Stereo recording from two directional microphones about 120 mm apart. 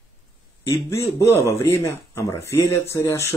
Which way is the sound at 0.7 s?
25° left (ahead or behind).